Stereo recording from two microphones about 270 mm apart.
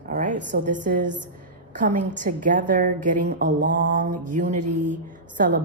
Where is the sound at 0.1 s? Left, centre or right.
Right.